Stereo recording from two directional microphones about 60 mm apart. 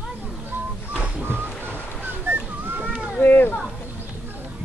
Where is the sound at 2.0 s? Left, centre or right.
Right.